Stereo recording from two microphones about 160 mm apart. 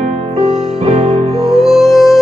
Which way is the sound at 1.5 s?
Centre (ahead or behind).